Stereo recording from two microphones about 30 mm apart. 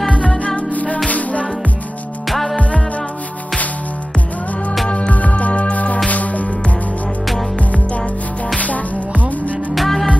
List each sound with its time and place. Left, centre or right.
0.6 s music: left
2.2 s music: centre
4.8 s music: left
5.3 s music: left
8.5 s music: left
9.8 s music: centre